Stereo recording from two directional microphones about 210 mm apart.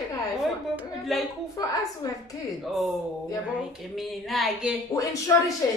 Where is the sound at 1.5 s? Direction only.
15° left (ahead or behind).